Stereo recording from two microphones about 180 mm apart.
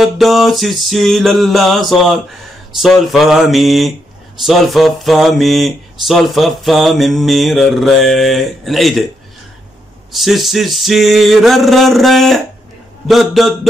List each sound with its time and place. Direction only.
0.0 s speech: centre (ahead or behind)
10.1 s speech: centre (ahead or behind)